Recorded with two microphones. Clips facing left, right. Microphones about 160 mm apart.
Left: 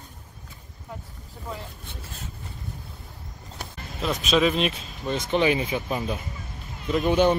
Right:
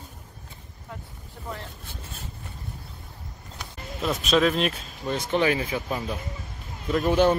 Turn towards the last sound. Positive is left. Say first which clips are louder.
# even
turn(degrees=0)  # may be behind; listen again after turning